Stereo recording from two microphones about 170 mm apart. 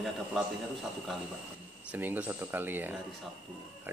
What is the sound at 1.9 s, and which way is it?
Speech, 10° right (ahead or behind).